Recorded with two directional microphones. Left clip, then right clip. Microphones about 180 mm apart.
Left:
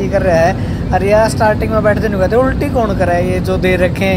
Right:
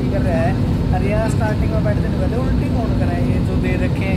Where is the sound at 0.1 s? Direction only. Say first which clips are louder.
Left 11 dB; 50° left (ahead or behind).